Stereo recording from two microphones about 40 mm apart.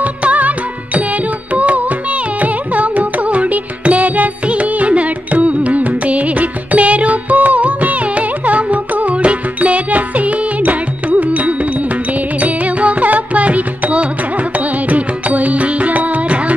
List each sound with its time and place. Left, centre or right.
0.0 s music: right